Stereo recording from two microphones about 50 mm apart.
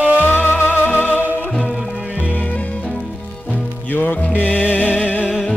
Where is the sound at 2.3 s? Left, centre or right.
Left.